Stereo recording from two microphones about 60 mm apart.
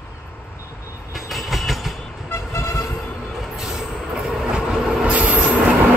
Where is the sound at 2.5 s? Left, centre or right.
Left.